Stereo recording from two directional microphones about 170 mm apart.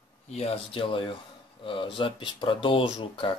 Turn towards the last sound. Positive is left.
turn(degrees=30)  # may be behind; listen again after turning